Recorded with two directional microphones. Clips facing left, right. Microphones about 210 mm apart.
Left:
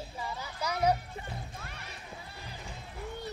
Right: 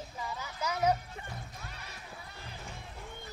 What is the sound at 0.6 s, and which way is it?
Music, 35° left (ahead or behind).